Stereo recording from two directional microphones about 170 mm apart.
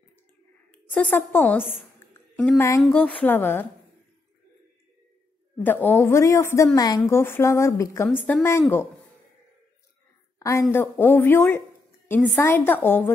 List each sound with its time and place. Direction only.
0.7 s a woman's voice: 10° left (ahead or behind)
2.8 s a woman's voice: 5° left (ahead or behind)
5.6 s a woman's voice: 10° left (ahead or behind)
10.7 s a woman's voice: 15° left (ahead or behind)